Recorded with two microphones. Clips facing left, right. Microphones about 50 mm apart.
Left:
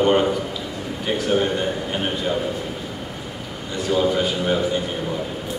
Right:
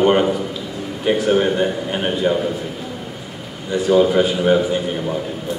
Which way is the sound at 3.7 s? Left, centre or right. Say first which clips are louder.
Right 6 dB; centre.